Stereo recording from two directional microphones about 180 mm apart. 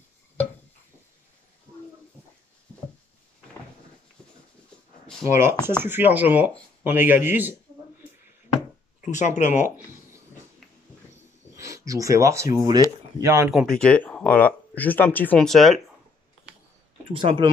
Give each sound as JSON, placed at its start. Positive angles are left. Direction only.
{"t": 5.4, "sound": "speech", "side_deg": -15}
{"t": 9.0, "sound": "speech", "side_deg": 40}
{"t": 11.5, "sound": "speech", "side_deg": -15}
{"t": 13.5, "sound": "speech", "side_deg": 0}
{"t": 17.1, "sound": "speech", "side_deg": -30}